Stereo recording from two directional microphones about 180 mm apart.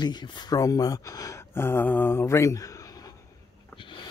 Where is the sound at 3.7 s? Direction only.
25° left (ahead or behind).